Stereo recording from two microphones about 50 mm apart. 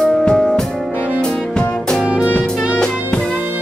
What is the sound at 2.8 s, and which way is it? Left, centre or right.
Music, centre.